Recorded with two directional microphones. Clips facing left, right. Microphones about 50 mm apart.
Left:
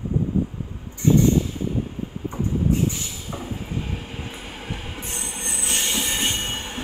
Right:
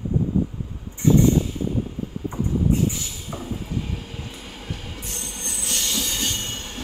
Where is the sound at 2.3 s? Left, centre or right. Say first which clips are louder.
Right 1 dB; left.